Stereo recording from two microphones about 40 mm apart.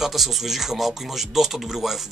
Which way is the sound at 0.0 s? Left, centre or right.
Centre.